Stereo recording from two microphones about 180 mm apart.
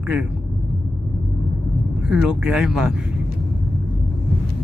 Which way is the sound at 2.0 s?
5° right (ahead or behind).